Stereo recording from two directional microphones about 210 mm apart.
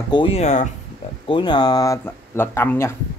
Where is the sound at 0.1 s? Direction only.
25° left (ahead or behind).